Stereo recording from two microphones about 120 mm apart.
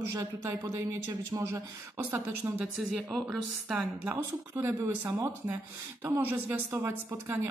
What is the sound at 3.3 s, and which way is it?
Speech, 5° right (ahead or behind).